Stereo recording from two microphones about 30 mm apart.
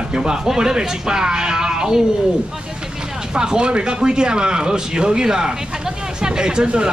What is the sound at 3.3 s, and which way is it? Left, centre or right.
Speech, right.